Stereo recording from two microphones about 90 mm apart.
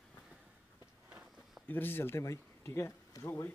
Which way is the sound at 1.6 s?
20° left (ahead or behind).